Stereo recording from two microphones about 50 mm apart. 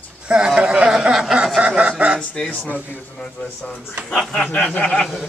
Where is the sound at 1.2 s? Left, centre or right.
Centre.